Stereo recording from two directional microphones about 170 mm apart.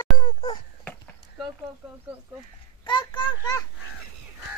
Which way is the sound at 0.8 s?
10° left (ahead or behind).